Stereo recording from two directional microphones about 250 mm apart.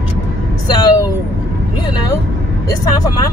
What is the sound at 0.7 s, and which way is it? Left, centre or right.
Speech, centre.